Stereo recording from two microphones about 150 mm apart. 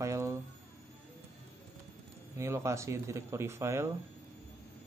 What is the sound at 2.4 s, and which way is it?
Speech, 20° right (ahead or behind).